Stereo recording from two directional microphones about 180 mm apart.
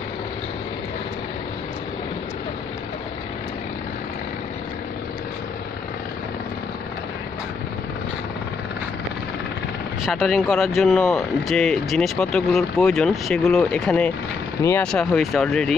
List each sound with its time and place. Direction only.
10.0 s speech: centre (ahead or behind)